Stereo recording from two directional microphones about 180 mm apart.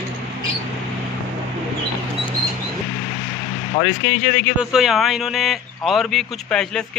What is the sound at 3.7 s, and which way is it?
Speech, 30° left (ahead or behind).